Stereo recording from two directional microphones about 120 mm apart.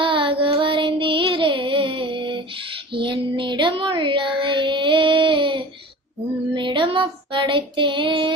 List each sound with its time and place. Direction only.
0.0 s child singing: 45° right (ahead or behind)